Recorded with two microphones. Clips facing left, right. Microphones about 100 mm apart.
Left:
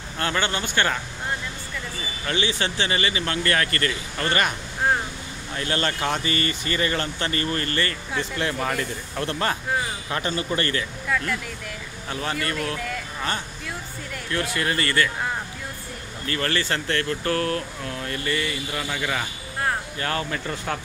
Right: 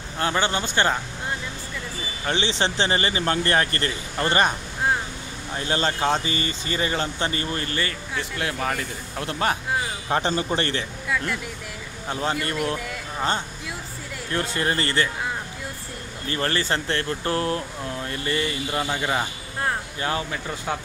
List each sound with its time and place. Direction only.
0.2 s speech: 20° right (ahead or behind)
2.2 s speech: 25° right (ahead or behind)
5.6 s speech: 20° right (ahead or behind); by 9.2 s centre (ahead or behind)
9.2 s speech: 15° right (ahead or behind)
10.0 s speech: 30° right (ahead or behind)
12.1 s speech: 25° right (ahead or behind)
14.3 s speech: 30° right (ahead or behind)
16.3 s speech: 25° right (ahead or behind)